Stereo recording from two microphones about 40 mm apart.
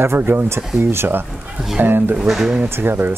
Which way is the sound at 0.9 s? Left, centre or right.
Right.